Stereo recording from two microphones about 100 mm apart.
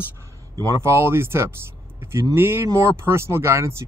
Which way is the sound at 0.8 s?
25° right (ahead or behind).